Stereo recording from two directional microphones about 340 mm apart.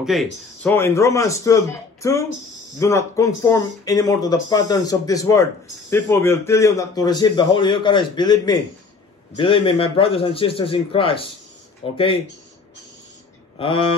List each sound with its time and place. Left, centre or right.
0.0 s speech: centre
13.6 s speech: centre